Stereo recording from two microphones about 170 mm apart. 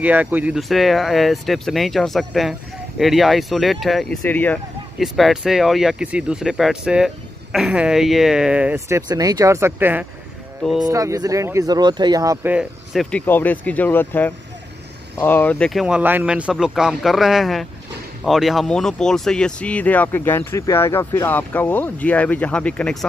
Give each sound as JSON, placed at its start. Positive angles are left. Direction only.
{"t": 0.0, "sound": "speech", "side_deg": -10}
{"t": 12.5, "sound": "speech", "side_deg": 0}
{"t": 13.3, "sound": "speech", "side_deg": 10}